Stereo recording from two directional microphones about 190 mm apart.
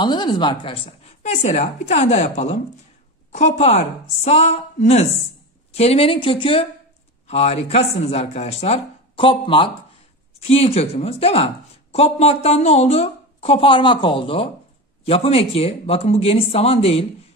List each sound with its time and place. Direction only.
0.0 s speech: 25° left (ahead or behind)